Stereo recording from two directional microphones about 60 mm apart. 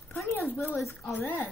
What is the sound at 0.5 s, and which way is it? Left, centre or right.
Speech, left.